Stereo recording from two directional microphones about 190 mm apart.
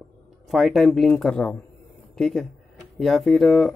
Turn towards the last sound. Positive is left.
turn(degrees=0)  # may be behind; listen again after turning